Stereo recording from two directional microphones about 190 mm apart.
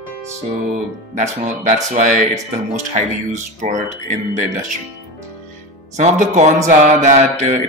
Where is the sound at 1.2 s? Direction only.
40° right (ahead or behind).